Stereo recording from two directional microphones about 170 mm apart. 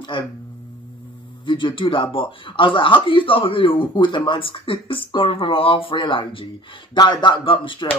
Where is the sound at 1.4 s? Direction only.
30° left (ahead or behind).